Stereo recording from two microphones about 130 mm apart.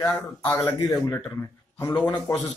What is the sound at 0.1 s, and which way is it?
Speech, 20° left (ahead or behind).